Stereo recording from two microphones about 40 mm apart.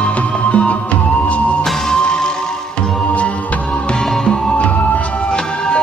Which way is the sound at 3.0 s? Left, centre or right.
Left.